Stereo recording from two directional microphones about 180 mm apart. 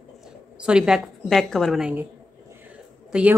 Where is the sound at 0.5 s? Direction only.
5° right (ahead or behind).